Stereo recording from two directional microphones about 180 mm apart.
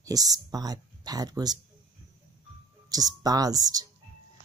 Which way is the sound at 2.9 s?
20° right (ahead or behind).